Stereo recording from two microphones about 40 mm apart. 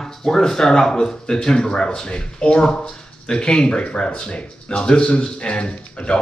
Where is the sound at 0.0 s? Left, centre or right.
Centre.